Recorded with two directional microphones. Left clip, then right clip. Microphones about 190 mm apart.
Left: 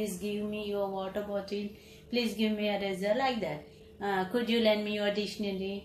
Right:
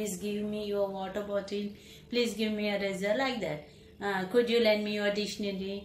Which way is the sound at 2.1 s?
15° right (ahead or behind).